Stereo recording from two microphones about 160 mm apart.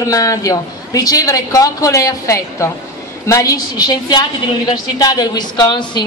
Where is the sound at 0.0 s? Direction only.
20° left (ahead or behind).